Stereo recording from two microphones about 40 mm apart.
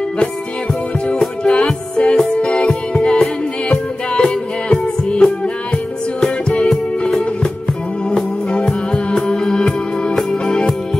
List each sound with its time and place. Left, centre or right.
1.4 s music: left
8.9 s music: centre